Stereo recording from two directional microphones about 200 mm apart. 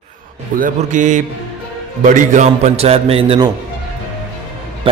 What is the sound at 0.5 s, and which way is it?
A man's voice, 40° right (ahead or behind).